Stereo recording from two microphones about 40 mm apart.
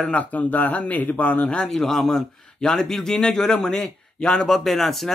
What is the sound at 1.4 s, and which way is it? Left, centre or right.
Speech, centre.